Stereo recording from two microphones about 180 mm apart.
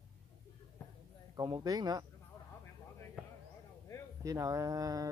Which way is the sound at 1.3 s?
20° right (ahead or behind).